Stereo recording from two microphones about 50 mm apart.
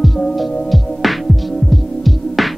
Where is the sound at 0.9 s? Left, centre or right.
Centre.